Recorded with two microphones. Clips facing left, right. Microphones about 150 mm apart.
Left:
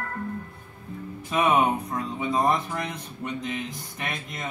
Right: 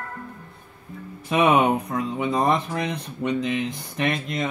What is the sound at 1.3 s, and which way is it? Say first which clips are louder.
Speech: right 4 dB; 75° right (ahead or behind).